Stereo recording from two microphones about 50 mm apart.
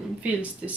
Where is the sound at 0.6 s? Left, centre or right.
Right.